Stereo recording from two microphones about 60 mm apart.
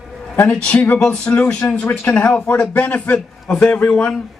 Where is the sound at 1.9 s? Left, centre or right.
Left.